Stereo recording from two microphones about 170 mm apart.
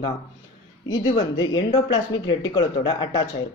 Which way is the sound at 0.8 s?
30° left (ahead or behind).